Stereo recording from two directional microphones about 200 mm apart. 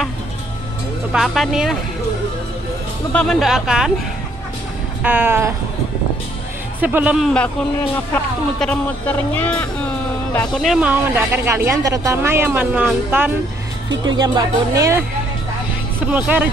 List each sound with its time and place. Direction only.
1.1 s speech: centre (ahead or behind)
3.1 s speech: 5° left (ahead or behind)
5.0 s speech: 10° right (ahead or behind)
6.8 s speech: 5° right (ahead or behind)
14.1 s speech: 20° right (ahead or behind)
16.1 s speech: 10° right (ahead or behind)